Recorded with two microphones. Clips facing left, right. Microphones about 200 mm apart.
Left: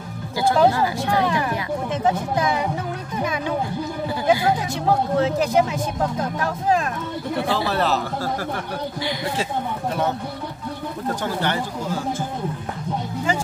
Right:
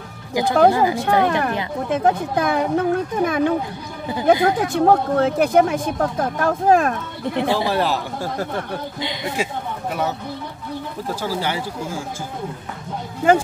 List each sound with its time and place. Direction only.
0.3 s music: 15° right (ahead or behind)
0.7 s speech: 15° right (ahead or behind)
1.2 s speech: 55° right (ahead or behind)
4.6 s speech: 55° right (ahead or behind)
7.3 s speech: 15° right (ahead or behind)
11.2 s speech: 10° right (ahead or behind)
13.3 s speech: 55° right (ahead or behind)